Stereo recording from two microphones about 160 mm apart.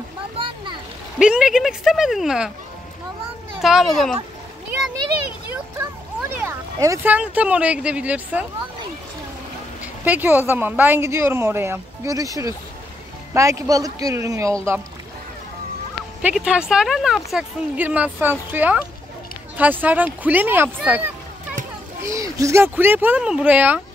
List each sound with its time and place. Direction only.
1.2 s speech: 5° right (ahead or behind)
3.6 s speech: centre (ahead or behind)
5.5 s speech: 15° right (ahead or behind)
10.0 s a woman's voice: 10° right (ahead or behind)
16.2 s a woman's voice: 5° right (ahead or behind)